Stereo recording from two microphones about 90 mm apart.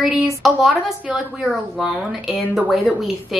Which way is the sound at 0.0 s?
Centre (ahead or behind).